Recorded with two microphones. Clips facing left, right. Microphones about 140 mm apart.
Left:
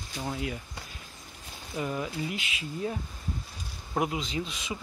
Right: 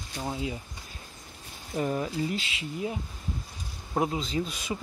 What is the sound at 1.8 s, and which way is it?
Speech, 35° right (ahead or behind).